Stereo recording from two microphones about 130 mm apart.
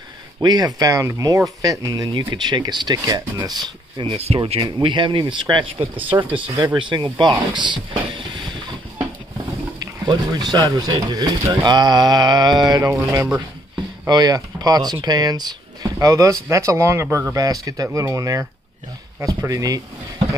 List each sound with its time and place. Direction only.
0.4 s speech: 30° right (ahead or behind)
10.0 s speech: 35° right (ahead or behind)